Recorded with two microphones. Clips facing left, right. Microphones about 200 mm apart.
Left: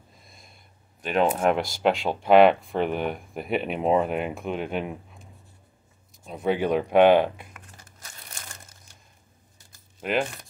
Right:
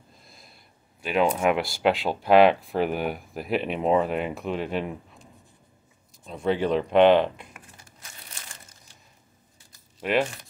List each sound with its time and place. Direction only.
0.2 s a sound: centre (ahead or behind)
1.0 s speech: centre (ahead or behind)
6.2 s speech: 5° left (ahead or behind)
8.0 s crushing: 45° left (ahead or behind)